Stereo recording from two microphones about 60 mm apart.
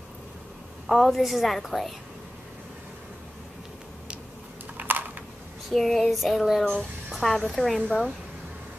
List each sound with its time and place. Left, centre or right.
0.8 s a woman's voice: centre
4.7 s a sound: right
5.7 s a woman's voice: centre
6.6 s speech: centre
7.1 s music: centre
7.4 s a woman's voice: centre